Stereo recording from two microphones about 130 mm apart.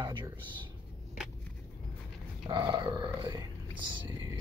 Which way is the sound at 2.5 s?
35° right (ahead or behind).